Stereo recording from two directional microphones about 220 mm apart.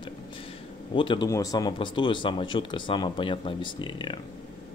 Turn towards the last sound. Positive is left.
turn(degrees=20)  # may be behind; listen again after turning